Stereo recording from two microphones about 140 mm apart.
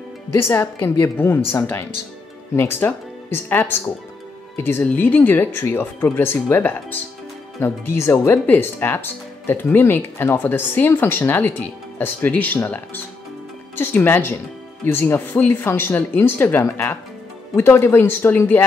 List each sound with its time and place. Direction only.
0.4 s speech: 15° left (ahead or behind)